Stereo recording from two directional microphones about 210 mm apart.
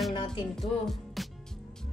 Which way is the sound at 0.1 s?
25° left (ahead or behind).